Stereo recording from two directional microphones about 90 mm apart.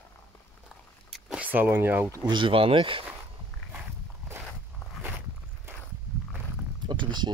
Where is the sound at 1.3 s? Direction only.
20° right (ahead or behind).